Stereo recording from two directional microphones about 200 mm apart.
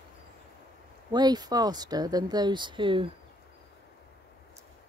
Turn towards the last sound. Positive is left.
turn(degrees=-25)  # may be behind; listen again after turning